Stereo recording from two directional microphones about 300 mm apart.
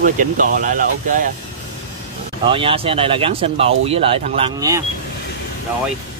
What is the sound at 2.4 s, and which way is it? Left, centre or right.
Speech, centre.